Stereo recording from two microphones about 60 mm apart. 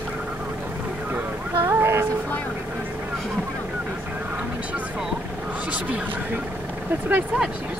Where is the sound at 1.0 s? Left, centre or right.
Right.